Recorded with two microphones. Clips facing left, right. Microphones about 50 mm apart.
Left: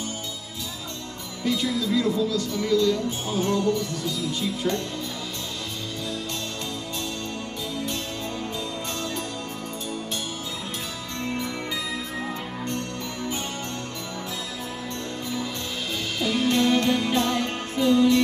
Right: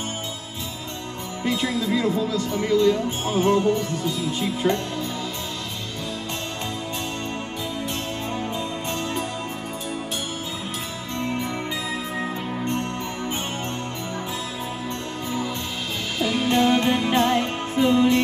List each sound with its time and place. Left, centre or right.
1.4 s speech: right
12.2 s music: right
16.2 s music: centre
16.4 s music: right